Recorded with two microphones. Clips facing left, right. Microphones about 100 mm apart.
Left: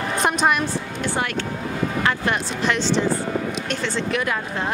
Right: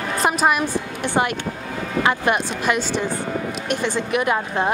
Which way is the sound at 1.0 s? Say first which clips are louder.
Right 4 dB; 20° right (ahead or behind).